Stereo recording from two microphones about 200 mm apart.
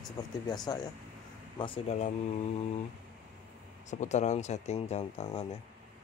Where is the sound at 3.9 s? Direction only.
35° left (ahead or behind).